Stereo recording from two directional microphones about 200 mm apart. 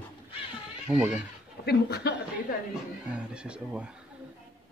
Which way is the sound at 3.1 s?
5° right (ahead or behind).